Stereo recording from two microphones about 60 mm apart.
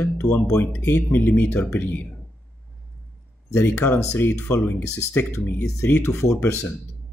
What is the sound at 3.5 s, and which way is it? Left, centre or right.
Speech, left.